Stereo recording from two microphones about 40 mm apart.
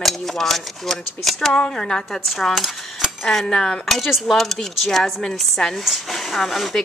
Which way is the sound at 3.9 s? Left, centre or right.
Centre.